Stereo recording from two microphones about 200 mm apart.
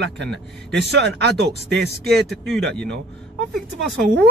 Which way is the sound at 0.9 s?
55° right (ahead or behind).